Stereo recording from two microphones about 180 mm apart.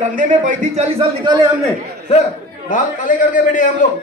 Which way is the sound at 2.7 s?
45° left (ahead or behind).